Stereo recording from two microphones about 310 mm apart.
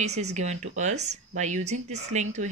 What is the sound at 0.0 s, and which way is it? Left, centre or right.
Speech, right.